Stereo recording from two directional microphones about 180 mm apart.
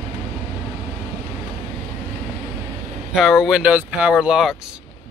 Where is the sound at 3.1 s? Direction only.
Centre (ahead or behind).